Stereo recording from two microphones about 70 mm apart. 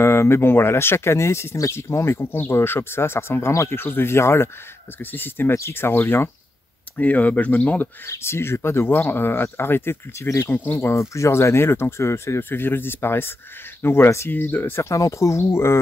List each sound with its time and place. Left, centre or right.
0.0 s speech: left
7.0 s speech: left
8.1 s speech: left
14.9 s speech: left